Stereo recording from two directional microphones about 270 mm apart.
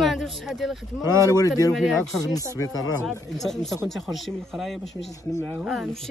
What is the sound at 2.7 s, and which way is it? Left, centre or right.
Speech, left.